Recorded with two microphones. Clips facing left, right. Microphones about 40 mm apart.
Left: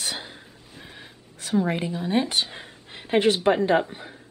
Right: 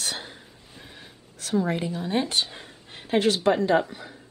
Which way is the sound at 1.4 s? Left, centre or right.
Left.